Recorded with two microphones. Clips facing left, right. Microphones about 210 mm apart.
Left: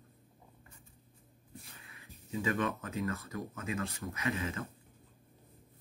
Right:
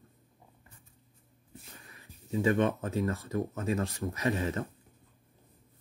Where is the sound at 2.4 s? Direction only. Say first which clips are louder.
Right 7 dB; 30° right (ahead or behind).